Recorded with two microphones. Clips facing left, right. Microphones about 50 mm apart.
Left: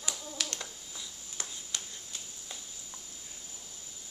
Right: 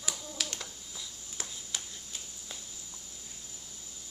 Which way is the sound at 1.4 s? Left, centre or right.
Centre.